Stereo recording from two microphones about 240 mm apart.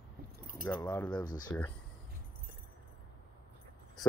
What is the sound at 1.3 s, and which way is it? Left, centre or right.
Speech, centre.